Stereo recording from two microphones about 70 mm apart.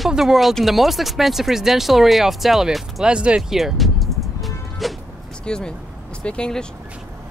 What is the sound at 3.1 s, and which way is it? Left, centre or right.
Speech, centre.